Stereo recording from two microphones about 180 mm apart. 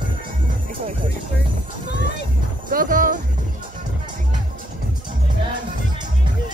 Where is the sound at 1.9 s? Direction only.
65° left (ahead or behind).